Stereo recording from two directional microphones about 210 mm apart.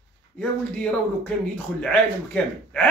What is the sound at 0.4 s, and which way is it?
Speech, 5° left (ahead or behind).